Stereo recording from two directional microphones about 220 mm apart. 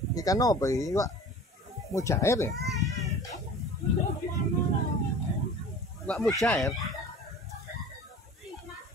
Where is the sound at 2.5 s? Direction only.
Centre (ahead or behind).